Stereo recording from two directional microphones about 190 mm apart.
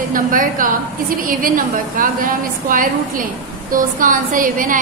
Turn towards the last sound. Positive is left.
turn(degrees=-45)  # may be behind; listen again after turning